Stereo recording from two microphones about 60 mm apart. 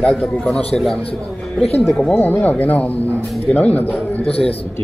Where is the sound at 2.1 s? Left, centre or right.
Left.